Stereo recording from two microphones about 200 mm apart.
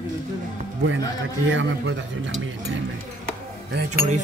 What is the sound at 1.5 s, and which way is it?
Speech, 70° right (ahead or behind).